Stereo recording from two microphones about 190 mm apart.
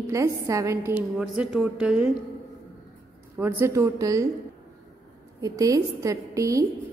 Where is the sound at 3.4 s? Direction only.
10° right (ahead or behind).